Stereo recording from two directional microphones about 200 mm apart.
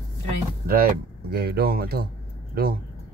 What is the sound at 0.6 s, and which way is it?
Speech, 50° right (ahead or behind).